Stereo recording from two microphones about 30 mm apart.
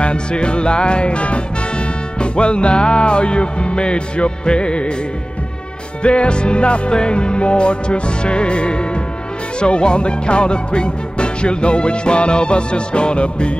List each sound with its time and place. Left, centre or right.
0.0 s music: left
6.0 s music: left